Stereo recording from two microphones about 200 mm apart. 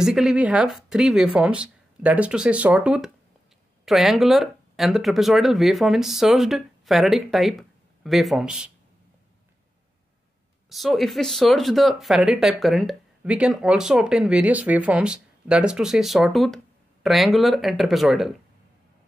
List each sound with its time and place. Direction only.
0.0 s speech: 5° right (ahead or behind)
10.7 s speech: centre (ahead or behind)